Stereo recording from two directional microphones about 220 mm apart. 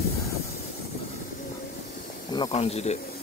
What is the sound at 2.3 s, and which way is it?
Speech, 25° left (ahead or behind).